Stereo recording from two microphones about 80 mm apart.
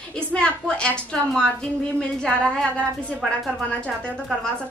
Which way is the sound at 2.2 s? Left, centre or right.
Centre.